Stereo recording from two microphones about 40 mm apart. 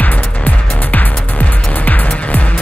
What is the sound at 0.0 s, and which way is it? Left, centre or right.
Music, left.